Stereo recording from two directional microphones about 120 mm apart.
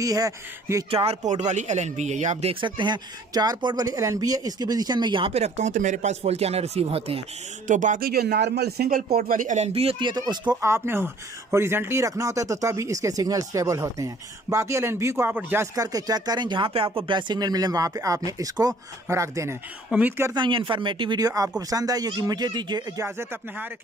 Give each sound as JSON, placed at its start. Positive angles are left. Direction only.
{"t": 0.0, "sound": "speech", "side_deg": -30}
{"t": 0.8, "sound": "speech", "side_deg": -55}
{"t": 1.2, "sound": "speech", "side_deg": -80}
{"t": 2.6, "sound": "speech", "side_deg": -40}
{"t": 5.3, "sound": "speech", "side_deg": -70}
{"t": 7.6, "sound": "speech", "side_deg": -90}
{"t": 9.5, "sound": "speech", "side_deg": -65}
{"t": 9.9, "sound": "speech", "side_deg": -35}
{"t": 10.6, "sound": "speech", "side_deg": -20}
{"t": 15.7, "sound": "speech", "side_deg": -30}
{"t": 20.3, "sound": "speech", "side_deg": -40}
{"t": 23.0, "sound": "speech", "side_deg": -20}